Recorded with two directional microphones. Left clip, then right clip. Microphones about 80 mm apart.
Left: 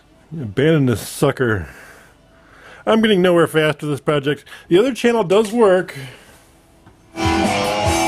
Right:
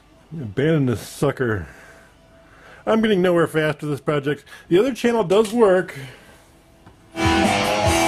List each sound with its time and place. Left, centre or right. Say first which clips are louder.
0.4 s a man's voice: left 4 dB; left
7.2 s music: left 1 dB; centre